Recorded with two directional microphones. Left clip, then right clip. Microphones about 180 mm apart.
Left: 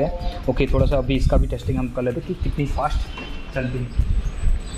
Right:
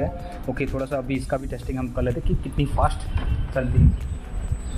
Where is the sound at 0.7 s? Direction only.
35° left (ahead or behind).